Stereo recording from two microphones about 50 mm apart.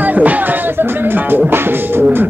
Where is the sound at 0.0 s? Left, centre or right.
Right.